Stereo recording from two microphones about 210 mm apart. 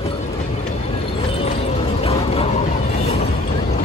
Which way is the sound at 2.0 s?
30° left (ahead or behind).